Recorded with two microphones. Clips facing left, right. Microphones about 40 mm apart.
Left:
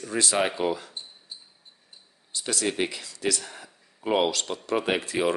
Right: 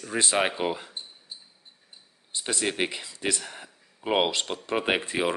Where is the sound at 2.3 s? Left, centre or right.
Right.